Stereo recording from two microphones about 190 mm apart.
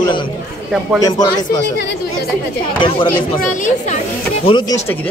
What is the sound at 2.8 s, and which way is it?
Speech, 25° left (ahead or behind).